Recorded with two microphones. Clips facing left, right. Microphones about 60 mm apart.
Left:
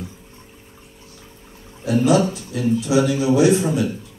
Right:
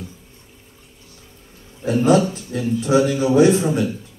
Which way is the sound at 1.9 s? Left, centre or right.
Right.